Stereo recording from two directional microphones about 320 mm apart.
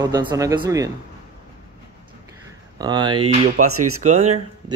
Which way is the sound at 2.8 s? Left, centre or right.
Centre.